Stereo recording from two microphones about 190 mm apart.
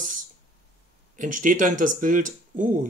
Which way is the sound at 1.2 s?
45° right (ahead or behind).